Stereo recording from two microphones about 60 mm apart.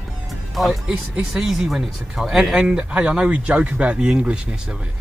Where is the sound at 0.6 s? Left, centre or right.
Centre.